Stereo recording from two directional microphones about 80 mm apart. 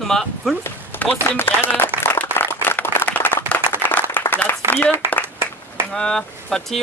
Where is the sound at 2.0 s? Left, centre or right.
Left.